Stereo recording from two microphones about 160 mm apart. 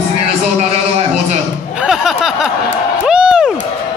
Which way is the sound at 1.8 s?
Centre (ahead or behind).